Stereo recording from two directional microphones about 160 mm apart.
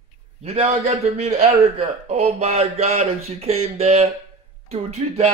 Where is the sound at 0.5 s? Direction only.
45° right (ahead or behind).